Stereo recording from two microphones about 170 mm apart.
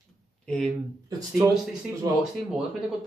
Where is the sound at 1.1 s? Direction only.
20° right (ahead or behind).